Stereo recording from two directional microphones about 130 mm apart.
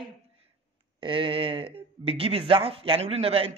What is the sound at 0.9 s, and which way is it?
Speech, 40° right (ahead or behind).